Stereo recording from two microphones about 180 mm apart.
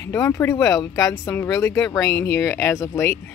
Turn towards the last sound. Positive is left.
turn(degrees=15)  # may be behind; listen again after turning